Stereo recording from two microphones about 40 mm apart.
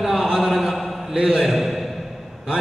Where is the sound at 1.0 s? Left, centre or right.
Centre.